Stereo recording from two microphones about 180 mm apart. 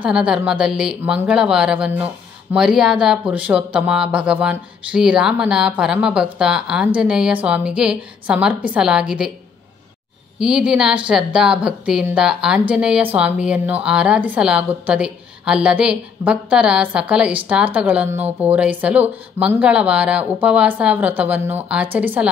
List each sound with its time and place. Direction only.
0.0 s speech: 5° right (ahead or behind)
10.4 s a woman's voice: 5° right (ahead or behind)